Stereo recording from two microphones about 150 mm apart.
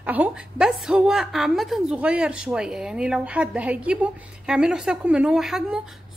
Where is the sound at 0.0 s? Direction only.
10° right (ahead or behind).